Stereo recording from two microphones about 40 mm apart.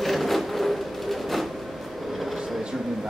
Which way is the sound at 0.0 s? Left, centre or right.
Centre.